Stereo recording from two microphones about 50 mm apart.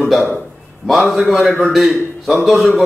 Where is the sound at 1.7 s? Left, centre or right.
Centre.